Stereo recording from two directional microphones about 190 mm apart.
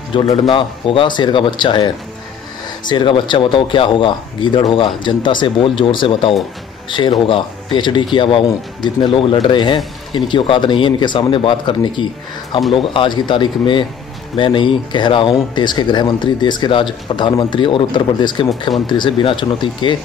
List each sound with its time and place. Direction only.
0.1 s speech: 25° left (ahead or behind)
2.9 s speech: 25° left (ahead or behind)